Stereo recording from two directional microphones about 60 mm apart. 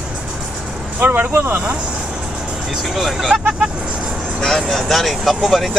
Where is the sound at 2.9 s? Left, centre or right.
Centre.